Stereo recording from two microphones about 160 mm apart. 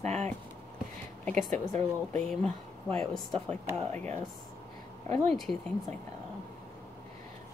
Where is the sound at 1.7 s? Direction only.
5° left (ahead or behind).